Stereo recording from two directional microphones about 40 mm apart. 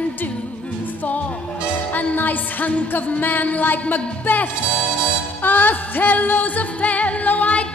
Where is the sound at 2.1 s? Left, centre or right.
Left.